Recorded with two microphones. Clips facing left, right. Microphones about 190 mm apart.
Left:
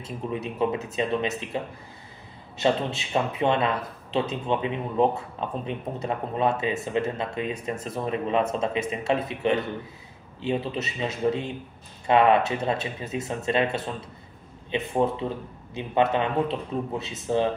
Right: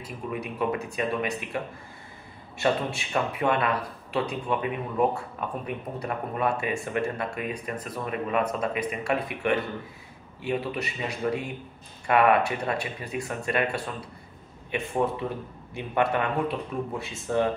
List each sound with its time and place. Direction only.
0.0 s speech: 25° left (ahead or behind)
14.9 s speech: 20° left (ahead or behind)